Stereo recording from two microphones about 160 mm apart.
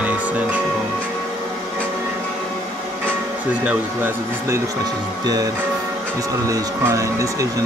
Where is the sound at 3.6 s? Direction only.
10° right (ahead or behind).